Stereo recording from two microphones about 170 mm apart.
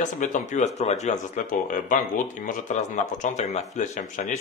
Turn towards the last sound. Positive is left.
turn(degrees=45)  # may be behind; listen again after turning